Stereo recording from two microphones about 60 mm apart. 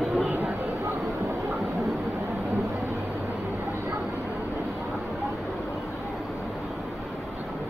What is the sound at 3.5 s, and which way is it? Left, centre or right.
Vehicle, right.